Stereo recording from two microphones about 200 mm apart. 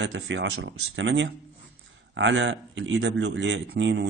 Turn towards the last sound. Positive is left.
turn(degrees=-65)  # may be behind; listen again after turning